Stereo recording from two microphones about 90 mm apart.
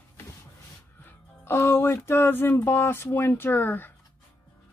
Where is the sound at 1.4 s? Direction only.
30° left (ahead or behind).